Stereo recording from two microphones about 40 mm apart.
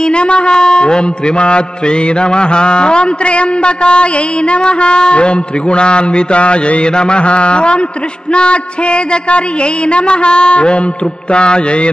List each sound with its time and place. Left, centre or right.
0.0 s mantra: left